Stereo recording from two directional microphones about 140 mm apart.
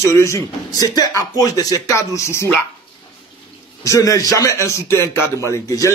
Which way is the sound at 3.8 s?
25° left (ahead or behind).